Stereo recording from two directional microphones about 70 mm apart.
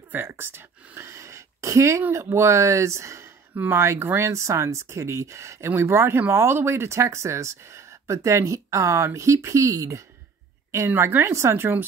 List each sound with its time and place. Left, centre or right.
0.1 s speech: right
5.7 s speech: right